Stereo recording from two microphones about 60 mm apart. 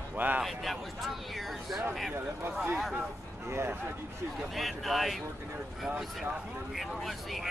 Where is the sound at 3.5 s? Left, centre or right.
Right.